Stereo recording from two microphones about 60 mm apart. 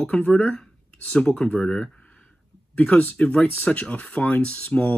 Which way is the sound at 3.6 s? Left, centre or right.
Left.